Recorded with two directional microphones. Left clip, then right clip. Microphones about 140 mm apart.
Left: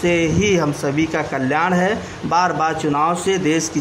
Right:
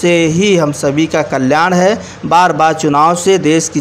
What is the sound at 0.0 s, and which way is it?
A man's voice, 25° right (ahead or behind).